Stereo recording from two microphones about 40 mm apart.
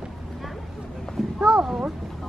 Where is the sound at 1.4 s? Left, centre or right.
Centre.